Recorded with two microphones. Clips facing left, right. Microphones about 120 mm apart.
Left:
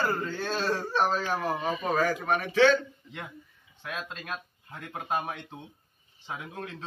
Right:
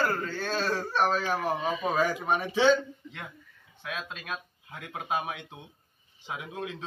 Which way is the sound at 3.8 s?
Centre (ahead or behind).